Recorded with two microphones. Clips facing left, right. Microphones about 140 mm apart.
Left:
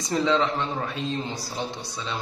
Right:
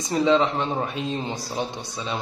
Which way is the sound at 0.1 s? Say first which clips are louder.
Right 3 dB; 20° right (ahead or behind).